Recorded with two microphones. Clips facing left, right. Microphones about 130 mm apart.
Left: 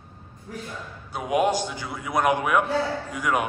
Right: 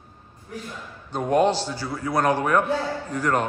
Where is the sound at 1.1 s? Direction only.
10° left (ahead or behind).